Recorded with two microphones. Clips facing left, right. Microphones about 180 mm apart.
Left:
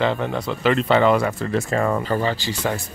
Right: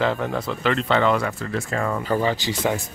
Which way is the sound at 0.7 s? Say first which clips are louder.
Left 3 dB; 10° left (ahead or behind).